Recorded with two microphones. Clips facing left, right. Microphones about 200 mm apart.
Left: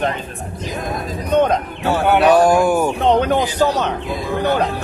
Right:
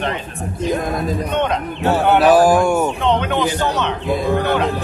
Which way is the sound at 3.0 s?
40° left (ahead or behind).